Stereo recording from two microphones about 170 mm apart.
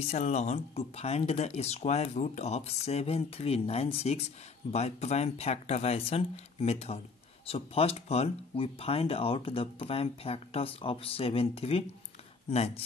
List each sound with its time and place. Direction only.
0.1 s speech: 40° left (ahead or behind)